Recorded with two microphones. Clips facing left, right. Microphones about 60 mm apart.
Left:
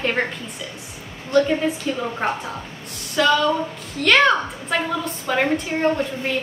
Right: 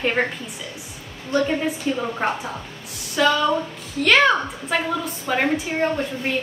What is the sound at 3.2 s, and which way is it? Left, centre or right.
A woman's voice, centre.